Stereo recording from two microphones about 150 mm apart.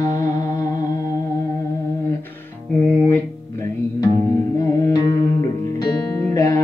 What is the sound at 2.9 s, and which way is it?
Music, 15° left (ahead or behind).